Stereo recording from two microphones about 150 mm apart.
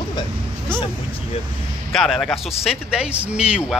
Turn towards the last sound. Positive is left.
turn(degrees=-5)  # may be behind; listen again after turning